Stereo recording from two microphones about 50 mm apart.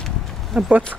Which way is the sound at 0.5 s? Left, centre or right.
Centre.